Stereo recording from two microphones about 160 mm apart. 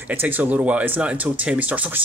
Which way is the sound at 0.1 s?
10° right (ahead or behind).